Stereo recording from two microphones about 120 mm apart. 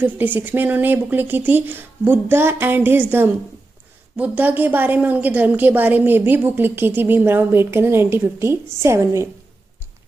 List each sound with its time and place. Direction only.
0.0 s a woman's voice: 15° right (ahead or behind)